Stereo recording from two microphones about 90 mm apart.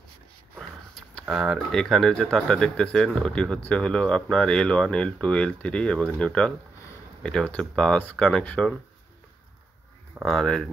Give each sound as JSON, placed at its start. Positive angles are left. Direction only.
{"t": 0.6, "sound": "a sound", "side_deg": 5}
{"t": 1.3, "sound": "speech", "side_deg": 0}
{"t": 10.2, "sound": "speech", "side_deg": 5}